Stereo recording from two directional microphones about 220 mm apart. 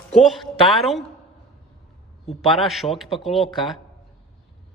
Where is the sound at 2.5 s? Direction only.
Centre (ahead or behind).